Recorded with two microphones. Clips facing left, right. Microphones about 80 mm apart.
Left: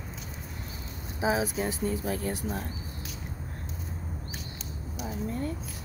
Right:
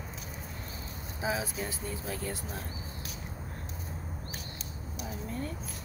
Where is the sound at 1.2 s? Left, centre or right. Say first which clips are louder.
Left 6 dB; left.